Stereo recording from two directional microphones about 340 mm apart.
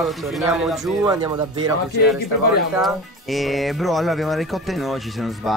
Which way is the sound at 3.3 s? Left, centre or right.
Centre.